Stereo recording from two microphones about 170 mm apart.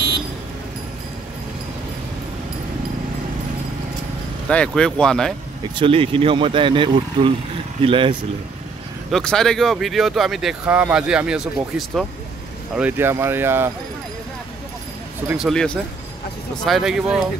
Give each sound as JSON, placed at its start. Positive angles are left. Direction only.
{"t": 4.5, "sound": "speech", "side_deg": 5}
{"t": 5.8, "sound": "speech", "side_deg": -30}
{"t": 9.1, "sound": "speech", "side_deg": 5}
{"t": 12.7, "sound": "speech", "side_deg": -10}
{"t": 15.3, "sound": "speech", "side_deg": 0}